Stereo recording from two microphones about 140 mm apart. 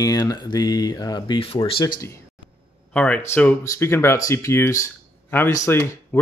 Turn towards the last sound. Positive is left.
turn(degrees=20)  # may be behind; listen again after turning